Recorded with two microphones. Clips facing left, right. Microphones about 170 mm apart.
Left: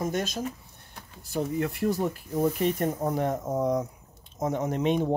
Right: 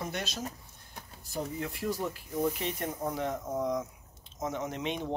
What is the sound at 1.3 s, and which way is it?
Speech, 60° left (ahead or behind).